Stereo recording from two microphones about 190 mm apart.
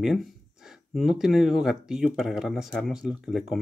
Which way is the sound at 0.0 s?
Centre (ahead or behind).